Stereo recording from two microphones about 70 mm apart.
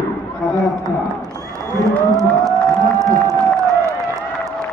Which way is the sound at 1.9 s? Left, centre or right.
Right.